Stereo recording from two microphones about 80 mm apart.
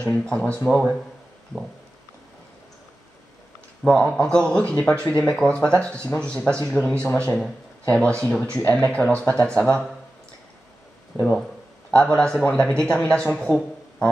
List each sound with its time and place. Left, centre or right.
0.2 s a man's voice: centre
3.8 s a man's voice: centre
11.1 s a man's voice: centre